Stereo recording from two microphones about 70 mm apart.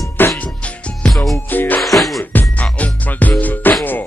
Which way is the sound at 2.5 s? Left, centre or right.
Left.